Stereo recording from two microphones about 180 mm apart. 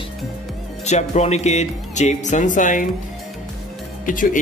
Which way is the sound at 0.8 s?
40° left (ahead or behind).